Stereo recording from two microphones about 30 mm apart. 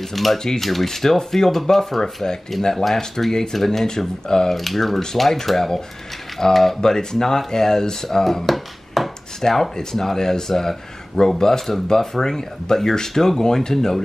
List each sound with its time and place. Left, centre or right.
0.1 s speech: centre
4.3 s speech: left
4.6 s speech: centre
6.8 s speech: left
8.2 s a sound: centre
9.4 s speech: centre
10.1 s speech: centre